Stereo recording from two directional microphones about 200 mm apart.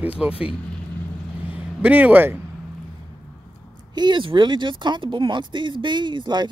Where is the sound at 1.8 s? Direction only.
5° right (ahead or behind).